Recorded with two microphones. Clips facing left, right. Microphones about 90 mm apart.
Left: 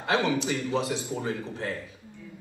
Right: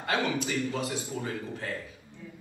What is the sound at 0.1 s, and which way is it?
A man's voice, 25° left (ahead or behind).